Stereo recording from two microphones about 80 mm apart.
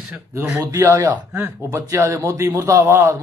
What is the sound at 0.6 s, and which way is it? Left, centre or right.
Speech, right.